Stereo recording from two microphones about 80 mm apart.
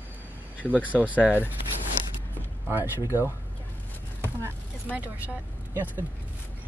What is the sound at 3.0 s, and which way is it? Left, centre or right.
Speech, left.